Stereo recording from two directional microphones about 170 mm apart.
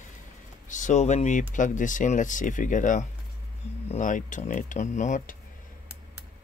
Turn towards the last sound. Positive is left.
turn(degrees=50)  # may be behind; listen again after turning